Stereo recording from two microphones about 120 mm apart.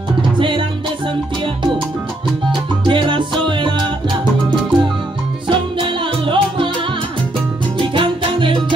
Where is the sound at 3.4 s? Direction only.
45° right (ahead or behind).